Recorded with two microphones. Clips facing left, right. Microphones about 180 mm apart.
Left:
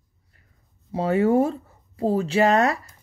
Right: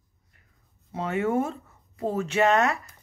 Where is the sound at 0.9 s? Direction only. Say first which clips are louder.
Left 6 dB; 35° left (ahead or behind).